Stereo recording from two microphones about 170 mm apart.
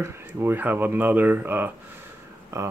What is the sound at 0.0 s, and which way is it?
Speech, 15° right (ahead or behind).